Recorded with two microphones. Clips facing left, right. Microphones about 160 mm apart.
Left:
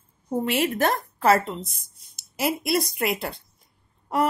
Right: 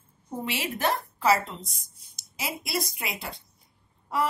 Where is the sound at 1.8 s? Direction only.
55° left (ahead or behind).